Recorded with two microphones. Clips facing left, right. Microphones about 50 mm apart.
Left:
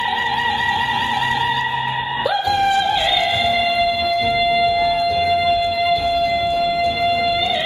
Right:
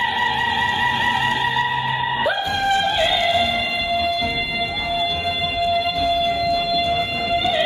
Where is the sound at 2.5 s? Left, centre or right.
Right.